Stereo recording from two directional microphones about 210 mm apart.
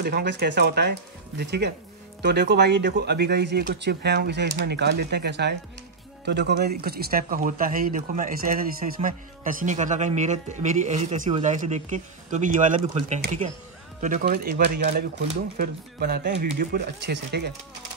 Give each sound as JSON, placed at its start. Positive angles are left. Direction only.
{"t": 0.0, "sound": "speech", "side_deg": -50}